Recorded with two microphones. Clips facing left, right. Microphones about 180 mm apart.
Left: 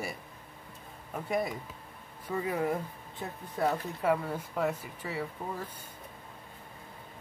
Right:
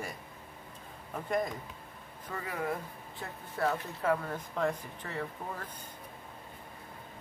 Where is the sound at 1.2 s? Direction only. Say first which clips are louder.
Left 1 dB; 10° left (ahead or behind).